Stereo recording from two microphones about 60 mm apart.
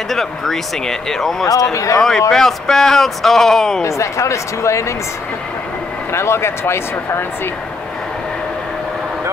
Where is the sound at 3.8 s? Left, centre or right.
Left.